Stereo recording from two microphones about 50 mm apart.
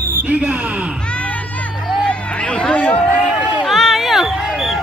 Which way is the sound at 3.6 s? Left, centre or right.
Centre.